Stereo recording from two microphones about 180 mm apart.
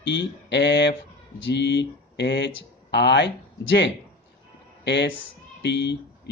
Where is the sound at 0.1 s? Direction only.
75° left (ahead or behind).